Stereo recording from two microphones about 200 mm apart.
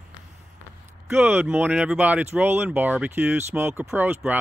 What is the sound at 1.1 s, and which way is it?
Speech, 10° right (ahead or behind).